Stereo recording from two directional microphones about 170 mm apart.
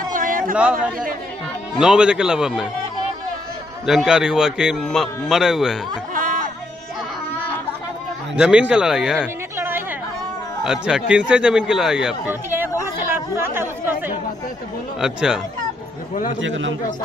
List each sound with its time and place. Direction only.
0.1 s a sound: 55° right (ahead or behind)
0.7 s a man's voice: 55° right (ahead or behind)
1.8 s speech: 5° right (ahead or behind)
3.8 s speech: 5° right (ahead or behind)
6.1 s music: 55° right (ahead or behind)
8.4 s speech: 5° right (ahead or behind)
16.3 s a man's voice: 90° right